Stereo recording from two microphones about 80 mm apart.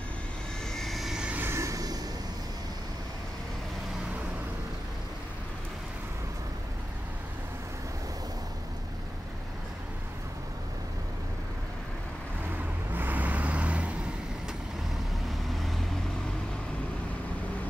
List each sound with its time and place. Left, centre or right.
0.7 s vehicle: centre
1.3 s vehicle: right
1.6 s vehicle: right
12.9 s vehicle: right